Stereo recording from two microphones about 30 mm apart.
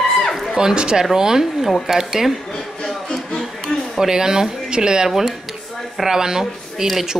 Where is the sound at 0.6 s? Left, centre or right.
Right.